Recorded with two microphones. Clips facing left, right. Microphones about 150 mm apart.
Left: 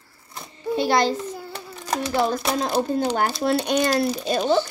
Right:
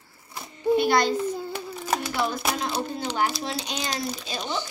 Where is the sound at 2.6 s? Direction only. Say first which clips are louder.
Left 7 dB; 40° left (ahead or behind).